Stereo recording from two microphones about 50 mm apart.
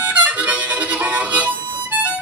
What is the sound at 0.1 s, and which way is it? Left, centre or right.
Harmonica, right.